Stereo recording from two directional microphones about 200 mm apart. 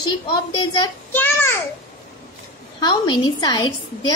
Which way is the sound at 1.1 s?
10° left (ahead or behind).